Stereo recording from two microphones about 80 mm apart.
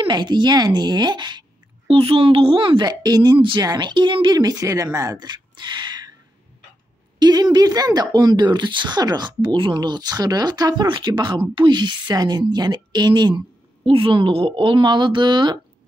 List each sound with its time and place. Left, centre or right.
0.0 s speech: right
2.0 s a woman's voice: right
3.7 s speech: right
5.2 s a sound: right
7.2 s speech: right
10.9 s speech: right
13.8 s speech: right